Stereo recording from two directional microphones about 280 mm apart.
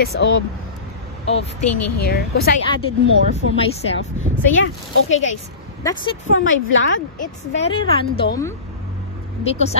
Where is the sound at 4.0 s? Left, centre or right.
Left.